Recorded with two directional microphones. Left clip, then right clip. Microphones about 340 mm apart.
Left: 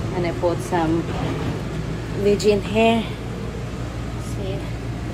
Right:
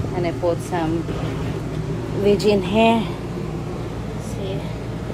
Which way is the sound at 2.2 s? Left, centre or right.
Centre.